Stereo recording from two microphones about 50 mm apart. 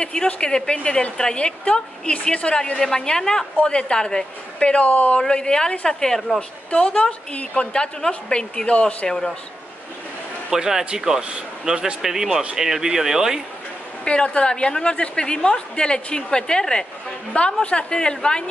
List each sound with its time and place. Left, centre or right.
0.0 s a woman's voice: centre
5.2 s a woman's voice: centre
6.7 s a woman's voice: left
10.5 s speech: centre
14.0 s a woman's voice: left